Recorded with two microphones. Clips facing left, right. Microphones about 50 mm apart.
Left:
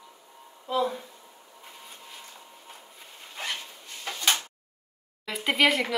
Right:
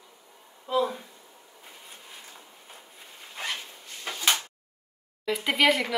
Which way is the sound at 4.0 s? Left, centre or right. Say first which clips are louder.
Even; centre.